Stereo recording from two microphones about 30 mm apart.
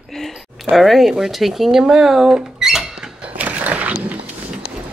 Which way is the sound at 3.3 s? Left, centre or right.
Right.